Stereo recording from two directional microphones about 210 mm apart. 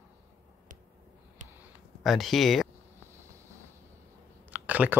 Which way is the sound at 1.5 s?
Centre (ahead or behind).